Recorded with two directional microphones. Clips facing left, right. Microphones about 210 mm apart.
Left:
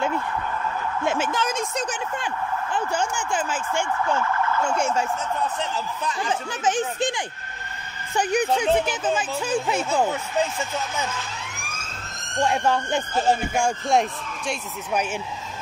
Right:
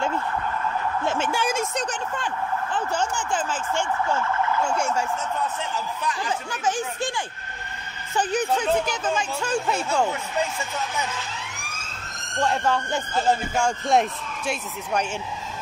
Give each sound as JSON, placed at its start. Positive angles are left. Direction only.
{"t": 1.0, "sound": "speech", "side_deg": 10}
{"t": 1.3, "sound": "a woman's voice", "side_deg": -10}
{"t": 1.8, "sound": "speech", "side_deg": 10}
{"t": 6.5, "sound": "speech", "side_deg": 20}
{"t": 12.4, "sound": "speech", "side_deg": 10}
{"t": 13.8, "sound": "a man's voice", "side_deg": -5}